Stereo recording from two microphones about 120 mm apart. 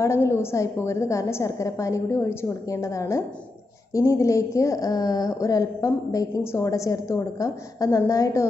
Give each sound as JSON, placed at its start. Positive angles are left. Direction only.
{"t": 0.0, "sound": "a woman's voice", "side_deg": 25}